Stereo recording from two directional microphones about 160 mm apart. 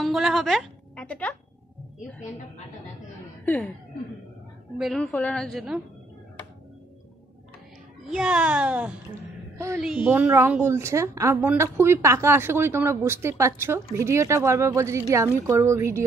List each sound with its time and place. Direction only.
0.0 s music: centre (ahead or behind)
3.4 s speech: 5° left (ahead or behind)
4.7 s a woman's voice: centre (ahead or behind)
8.0 s a woman's voice: 5° right (ahead or behind)